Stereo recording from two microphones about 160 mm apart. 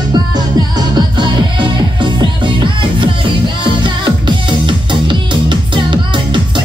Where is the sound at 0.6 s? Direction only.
25° right (ahead or behind).